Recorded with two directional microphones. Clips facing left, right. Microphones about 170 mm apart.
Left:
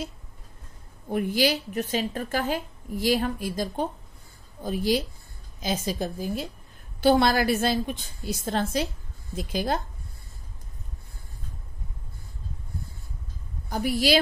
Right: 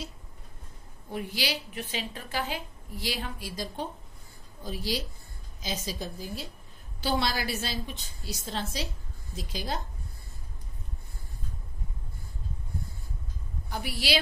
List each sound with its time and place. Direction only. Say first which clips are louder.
1.0 s a woman's voice: left 9 dB; 50° left (ahead or behind)
13.7 s a woman's voice: left 8 dB; 45° left (ahead or behind)